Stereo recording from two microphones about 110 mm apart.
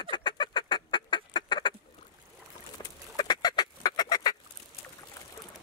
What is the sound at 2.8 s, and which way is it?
Duck, 40° left (ahead or behind).